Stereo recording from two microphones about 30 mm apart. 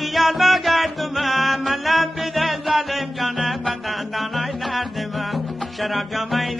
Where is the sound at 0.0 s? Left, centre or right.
Centre.